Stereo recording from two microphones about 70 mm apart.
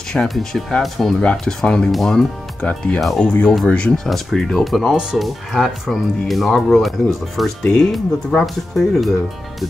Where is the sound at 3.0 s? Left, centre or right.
Centre.